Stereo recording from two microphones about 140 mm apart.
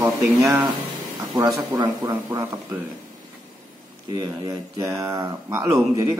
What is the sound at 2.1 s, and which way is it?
Speech, 15° right (ahead or behind).